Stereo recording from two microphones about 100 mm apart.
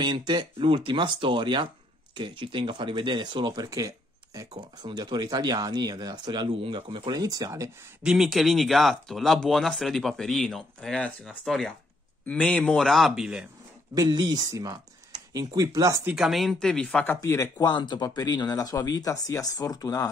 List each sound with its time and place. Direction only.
0.0 s speech: 50° right (ahead or behind)
3.6 s a sound: 35° right (ahead or behind)
4.6 s speech: 50° right (ahead or behind)
7.1 s speech: 40° right (ahead or behind)
8.0 s speech: 5° right (ahead or behind)
13.9 s speech: 40° right (ahead or behind)
16.2 s speech: centre (ahead or behind)
17.2 s speech: 35° left (ahead or behind)